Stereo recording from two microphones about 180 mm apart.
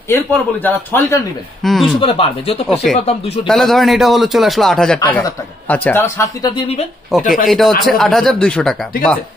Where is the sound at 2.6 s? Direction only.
Centre (ahead or behind).